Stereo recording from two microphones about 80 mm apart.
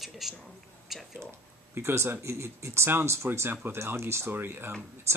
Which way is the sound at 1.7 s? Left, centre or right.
Right.